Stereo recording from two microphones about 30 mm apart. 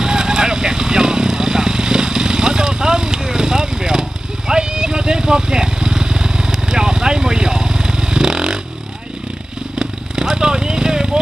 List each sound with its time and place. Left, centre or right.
0.0 s vehicle: right
9.8 s vehicle: right